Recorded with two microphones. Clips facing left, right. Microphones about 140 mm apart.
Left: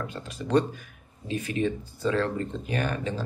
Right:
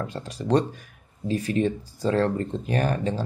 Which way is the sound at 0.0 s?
35° right (ahead or behind).